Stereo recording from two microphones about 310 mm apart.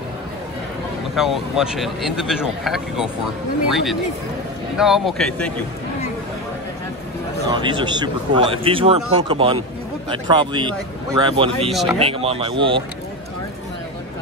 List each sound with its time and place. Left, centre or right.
1.1 s speech: centre
7.4 s a man's voice: centre
11.7 s speech: centre
12.1 s a man's voice: centre